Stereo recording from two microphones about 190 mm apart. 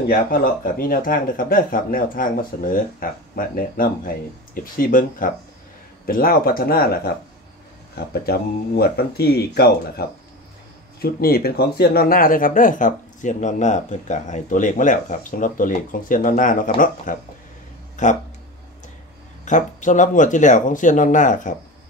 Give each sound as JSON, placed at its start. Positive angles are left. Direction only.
{"t": 0.1, "sound": "speech", "side_deg": 50}
{"t": 8.1, "sound": "speech", "side_deg": 55}
{"t": 19.4, "sound": "speech", "side_deg": 40}